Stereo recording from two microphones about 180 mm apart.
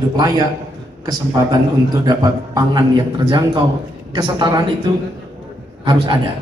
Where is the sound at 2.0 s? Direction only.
20° right (ahead or behind).